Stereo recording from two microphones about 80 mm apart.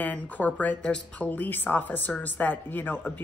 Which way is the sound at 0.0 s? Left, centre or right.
Centre.